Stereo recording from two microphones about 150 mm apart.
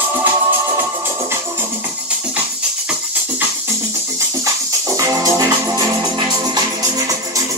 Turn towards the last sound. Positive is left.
turn(degrees=-20)  # may be behind; listen again after turning